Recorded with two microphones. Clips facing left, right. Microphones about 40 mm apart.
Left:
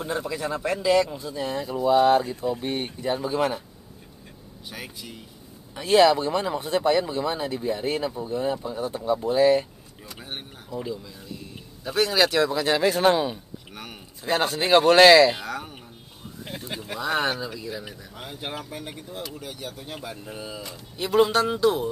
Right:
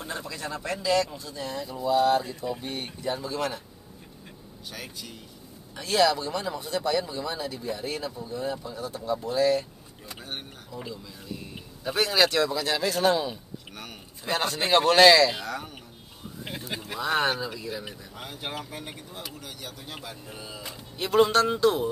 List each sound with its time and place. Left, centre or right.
0.0 s speech: centre
4.6 s speech: centre
5.8 s speech: left
10.2 s speech: centre
11.8 s speech: centre
13.0 s speech: left
13.7 s speech: centre
16.4 s speech: centre